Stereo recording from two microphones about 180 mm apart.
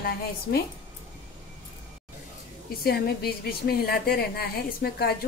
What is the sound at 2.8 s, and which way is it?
A woman's voice, 60° left (ahead or behind).